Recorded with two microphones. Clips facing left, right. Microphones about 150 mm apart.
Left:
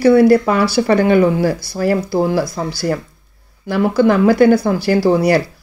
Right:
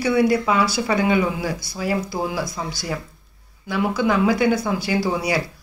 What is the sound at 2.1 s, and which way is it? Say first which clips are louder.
Speech: left 9 dB; 35° left (ahead or behind).